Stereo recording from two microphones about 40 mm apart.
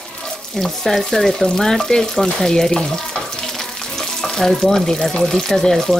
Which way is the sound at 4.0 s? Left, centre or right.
Centre.